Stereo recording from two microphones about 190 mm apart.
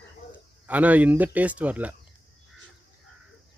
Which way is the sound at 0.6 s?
10° right (ahead or behind).